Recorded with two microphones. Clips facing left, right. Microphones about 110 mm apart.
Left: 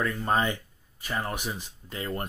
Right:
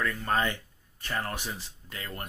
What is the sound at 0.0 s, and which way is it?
Speech, 15° left (ahead or behind).